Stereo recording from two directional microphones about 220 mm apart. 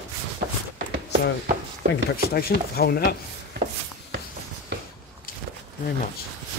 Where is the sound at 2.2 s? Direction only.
45° left (ahead or behind).